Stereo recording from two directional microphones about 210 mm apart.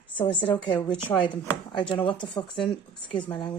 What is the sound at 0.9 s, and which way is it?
Speech, 5° left (ahead or behind).